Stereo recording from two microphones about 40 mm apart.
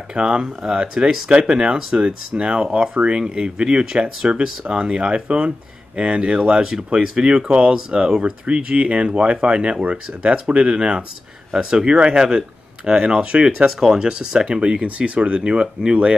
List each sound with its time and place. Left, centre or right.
0.1 s speech: right
2.0 s speech: right
13.7 s speech: centre